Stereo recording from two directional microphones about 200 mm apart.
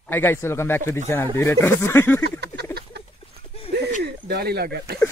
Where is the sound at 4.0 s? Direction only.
55° right (ahead or behind).